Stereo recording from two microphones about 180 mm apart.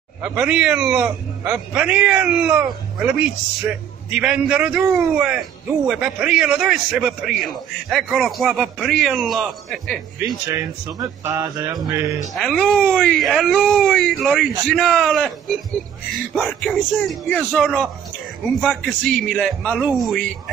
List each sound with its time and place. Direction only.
0.2 s a man's voice: 10° right (ahead or behind)
10.5 s speech: 20° right (ahead or behind)
12.2 s a man's voice: centre (ahead or behind)